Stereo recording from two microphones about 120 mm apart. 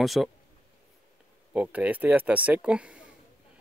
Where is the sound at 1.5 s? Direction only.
10° right (ahead or behind).